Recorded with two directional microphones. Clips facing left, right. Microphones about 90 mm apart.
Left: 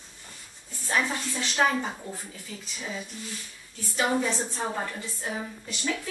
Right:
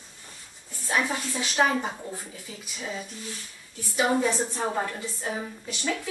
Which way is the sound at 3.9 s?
10° right (ahead or behind).